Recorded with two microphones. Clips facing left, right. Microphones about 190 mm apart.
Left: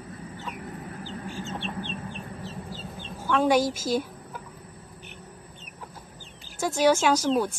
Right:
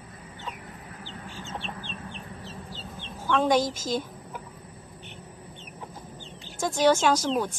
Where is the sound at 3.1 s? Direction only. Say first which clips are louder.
Left 1 dB; 10° left (ahead or behind).